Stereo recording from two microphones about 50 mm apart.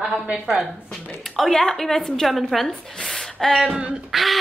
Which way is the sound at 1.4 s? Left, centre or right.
Centre.